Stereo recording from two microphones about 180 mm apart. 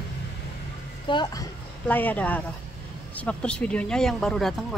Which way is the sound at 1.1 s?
25° left (ahead or behind).